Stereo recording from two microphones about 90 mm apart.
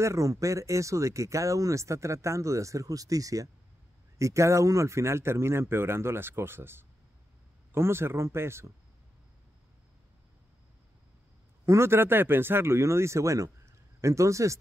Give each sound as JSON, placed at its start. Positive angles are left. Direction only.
{"t": 0.0, "sound": "speech", "side_deg": -35}
{"t": 11.6, "sound": "speech", "side_deg": -30}